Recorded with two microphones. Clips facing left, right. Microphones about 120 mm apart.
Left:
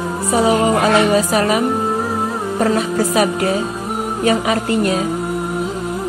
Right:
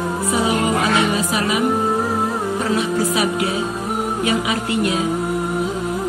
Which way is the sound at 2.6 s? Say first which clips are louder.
Left 5 dB; 40° left (ahead or behind).